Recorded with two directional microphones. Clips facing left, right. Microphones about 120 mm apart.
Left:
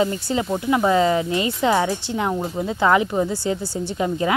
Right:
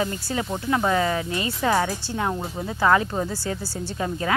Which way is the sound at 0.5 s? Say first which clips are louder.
Left 4 dB; 15° left (ahead or behind).